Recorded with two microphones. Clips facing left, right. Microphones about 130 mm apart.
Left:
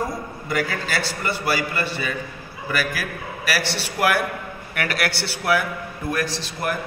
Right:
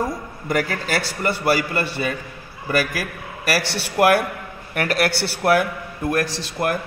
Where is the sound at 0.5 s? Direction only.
45° right (ahead or behind).